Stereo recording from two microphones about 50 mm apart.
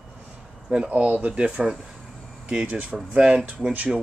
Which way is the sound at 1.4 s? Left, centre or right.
Centre.